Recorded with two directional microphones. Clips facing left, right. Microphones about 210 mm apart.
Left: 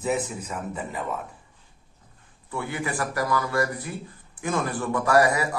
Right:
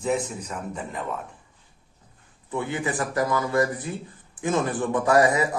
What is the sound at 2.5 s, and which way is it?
A man's voice, 20° right (ahead or behind).